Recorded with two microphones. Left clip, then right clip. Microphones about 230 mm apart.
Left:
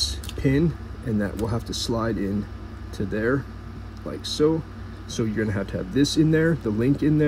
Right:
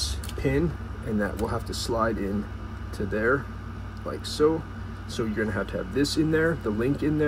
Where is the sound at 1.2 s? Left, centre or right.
Left.